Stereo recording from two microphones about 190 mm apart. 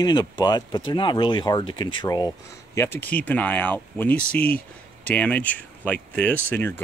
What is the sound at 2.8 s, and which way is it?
Speech, 10° left (ahead or behind).